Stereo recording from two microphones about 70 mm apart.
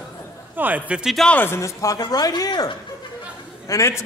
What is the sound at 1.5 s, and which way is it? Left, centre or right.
Speech, left.